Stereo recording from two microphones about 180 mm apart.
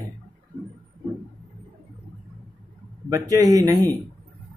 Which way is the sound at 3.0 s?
20° right (ahead or behind).